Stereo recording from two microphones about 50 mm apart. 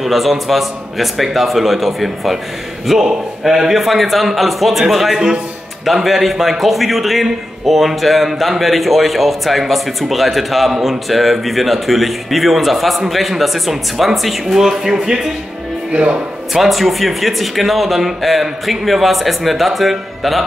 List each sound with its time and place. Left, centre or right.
0.0 s speech: centre
15.9 s speech: right
16.5 s speech: centre